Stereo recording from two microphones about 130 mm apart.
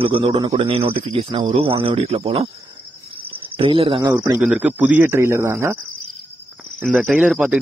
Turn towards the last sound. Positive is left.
turn(degrees=-5)  # may be behind; listen again after turning